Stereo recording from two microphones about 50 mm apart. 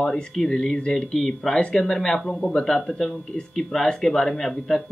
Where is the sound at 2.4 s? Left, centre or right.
Left.